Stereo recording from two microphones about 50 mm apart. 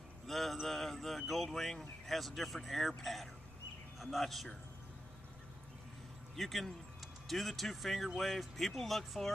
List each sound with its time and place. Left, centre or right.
0.3 s a sound: centre
3.0 s speech: centre
6.3 s speech: centre